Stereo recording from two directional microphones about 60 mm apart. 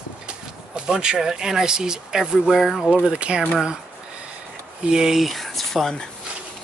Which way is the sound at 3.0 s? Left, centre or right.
Centre.